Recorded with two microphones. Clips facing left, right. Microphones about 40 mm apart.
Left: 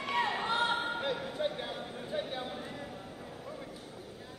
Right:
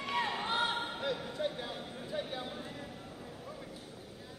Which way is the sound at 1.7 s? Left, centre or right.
Centre.